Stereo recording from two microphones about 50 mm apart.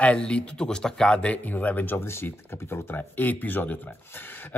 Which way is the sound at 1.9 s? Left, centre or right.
Left.